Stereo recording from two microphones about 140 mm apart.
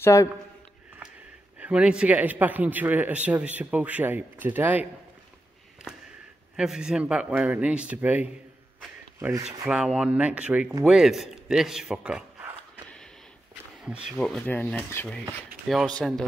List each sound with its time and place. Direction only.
0.0 s a man's voice: 20° left (ahead or behind)
1.6 s a man's voice: 5° right (ahead or behind)
6.5 s a man's voice: 5° right (ahead or behind)
9.7 s a man's voice: 5° right (ahead or behind)
14.1 s speech: 10° left (ahead or behind)
15.7 s speech: 5° left (ahead or behind)